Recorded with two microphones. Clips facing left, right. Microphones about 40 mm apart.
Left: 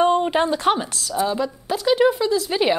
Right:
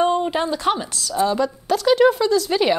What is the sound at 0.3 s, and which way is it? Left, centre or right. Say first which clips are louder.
Speech: left 2 dB; left.